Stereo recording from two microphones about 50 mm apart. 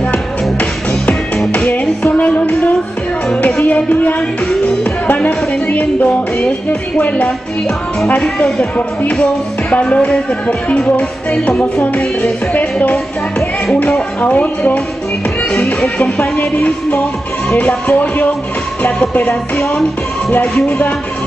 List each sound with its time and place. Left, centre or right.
0.1 s music: left
8.2 s speech: centre
9.2 s music: left
14.2 s music: left
16.0 s music: left
20.6 s music: left